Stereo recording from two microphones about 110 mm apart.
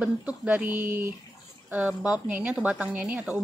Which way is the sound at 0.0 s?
10° right (ahead or behind).